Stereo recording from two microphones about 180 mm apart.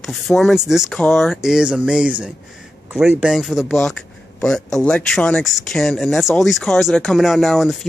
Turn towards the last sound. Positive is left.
turn(degrees=0)  # may be behind; listen again after turning